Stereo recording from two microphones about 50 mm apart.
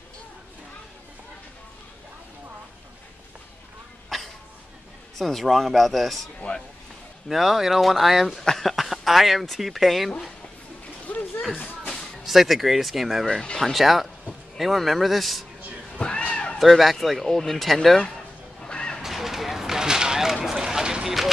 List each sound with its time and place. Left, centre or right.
4.1 s cough: centre
5.1 s speech: centre
6.5 s speech: left
7.2 s speech: centre
11.1 s a sound: left
11.8 s music: centre
12.3 s speech: centre
13.2 s speech: centre
13.6 s speech: centre
16.0 s a sound: centre
16.5 s speech: centre
18.6 s a sound: centre
19.0 s a sound: centre